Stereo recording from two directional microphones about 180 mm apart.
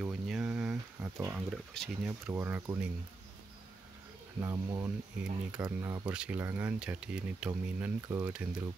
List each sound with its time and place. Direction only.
0.0 s a sound: 5° right (ahead or behind)
1.1 s speech: 15° right (ahead or behind)
1.5 s speech: centre (ahead or behind)
2.0 s speech: 10° right (ahead or behind)
4.4 s speech: 20° right (ahead or behind)
5.2 s speech: 5° right (ahead or behind)